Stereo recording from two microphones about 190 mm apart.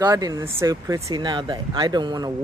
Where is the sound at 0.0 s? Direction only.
20° right (ahead or behind).